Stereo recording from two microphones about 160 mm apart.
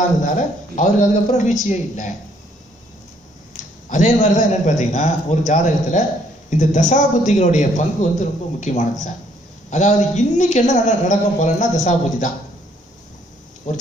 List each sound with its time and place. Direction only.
0.7 s a man's voice: 50° left (ahead or behind)
3.9 s a man's voice: 50° left (ahead or behind)
13.7 s a man's voice: 45° left (ahead or behind)